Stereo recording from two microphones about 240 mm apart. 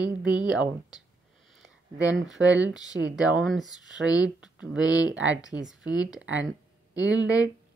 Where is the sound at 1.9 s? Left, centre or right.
Right.